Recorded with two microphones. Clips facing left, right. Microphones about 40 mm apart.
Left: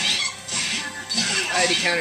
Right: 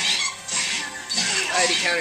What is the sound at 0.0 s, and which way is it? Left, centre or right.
Music, centre.